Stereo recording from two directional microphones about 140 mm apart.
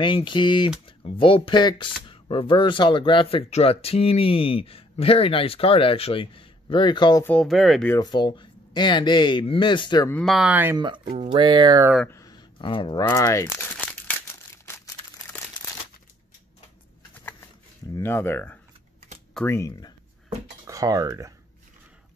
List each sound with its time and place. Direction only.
0.0 s speech: 35° left (ahead or behind)
7.2 s speech: 5° left (ahead or behind)
8.0 s speech: 30° left (ahead or behind)
10.2 s speech: 5° right (ahead or behind)
10.8 s speech: 35° right (ahead or behind)
12.1 s a sound: 25° left (ahead or behind)
13.0 s speech: 20° left (ahead or behind)
17.9 s speech: 15° left (ahead or behind)
20.6 s speech: 25° right (ahead or behind)